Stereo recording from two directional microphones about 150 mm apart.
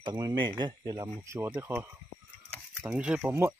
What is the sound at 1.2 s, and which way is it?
Speech, 15° right (ahead or behind).